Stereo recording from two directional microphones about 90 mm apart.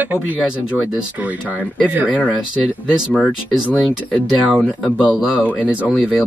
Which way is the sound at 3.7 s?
20° left (ahead or behind).